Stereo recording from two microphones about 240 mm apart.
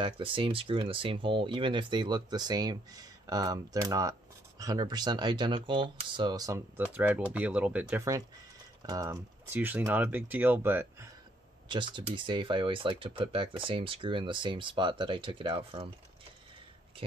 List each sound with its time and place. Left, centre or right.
0.0 s speech: right
11.7 s speech: centre